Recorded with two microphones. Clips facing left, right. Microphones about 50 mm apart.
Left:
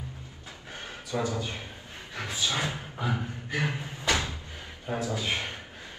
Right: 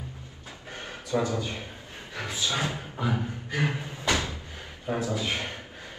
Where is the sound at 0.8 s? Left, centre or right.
Right.